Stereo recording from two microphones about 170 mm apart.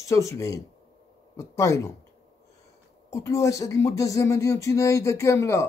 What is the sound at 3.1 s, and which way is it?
Speech, 15° left (ahead or behind).